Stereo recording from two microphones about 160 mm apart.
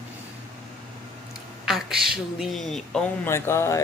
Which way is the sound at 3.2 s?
15° left (ahead or behind).